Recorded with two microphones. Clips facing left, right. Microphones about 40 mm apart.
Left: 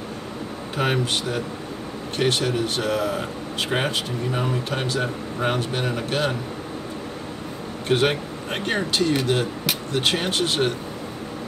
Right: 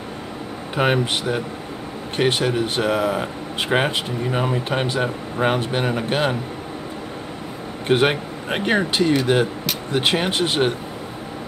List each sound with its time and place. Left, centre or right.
0.7 s speech: right
7.9 s speech: right